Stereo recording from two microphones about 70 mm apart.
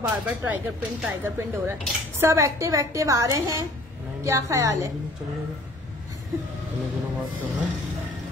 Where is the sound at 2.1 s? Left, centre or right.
Right.